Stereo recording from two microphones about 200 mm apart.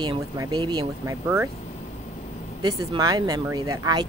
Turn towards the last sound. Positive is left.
turn(degrees=-20)  # may be behind; listen again after turning